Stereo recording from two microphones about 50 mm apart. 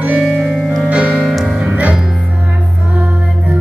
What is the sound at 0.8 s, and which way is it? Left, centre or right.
Music, right.